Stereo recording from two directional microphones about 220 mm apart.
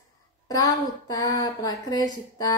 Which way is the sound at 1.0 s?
15° left (ahead or behind).